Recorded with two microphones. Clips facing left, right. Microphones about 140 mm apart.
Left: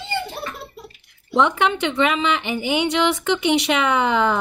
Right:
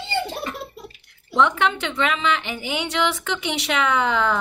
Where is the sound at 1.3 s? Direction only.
15° left (ahead or behind).